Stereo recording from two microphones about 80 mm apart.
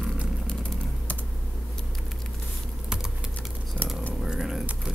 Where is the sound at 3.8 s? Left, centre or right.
Centre.